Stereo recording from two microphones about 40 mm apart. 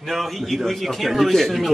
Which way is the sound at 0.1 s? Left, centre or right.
Centre.